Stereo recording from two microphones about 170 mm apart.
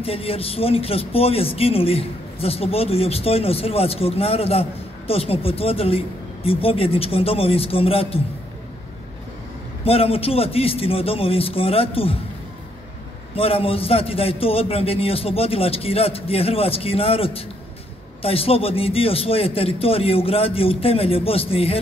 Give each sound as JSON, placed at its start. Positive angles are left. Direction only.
{"t": 0.0, "sound": "speech", "side_deg": 35}
{"t": 9.8, "sound": "speech", "side_deg": 35}
{"t": 13.4, "sound": "speech", "side_deg": 35}